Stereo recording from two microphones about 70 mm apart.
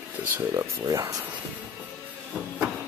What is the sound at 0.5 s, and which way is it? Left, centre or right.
Speech, right.